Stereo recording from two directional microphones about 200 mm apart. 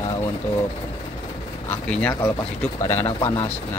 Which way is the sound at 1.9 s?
10° left (ahead or behind).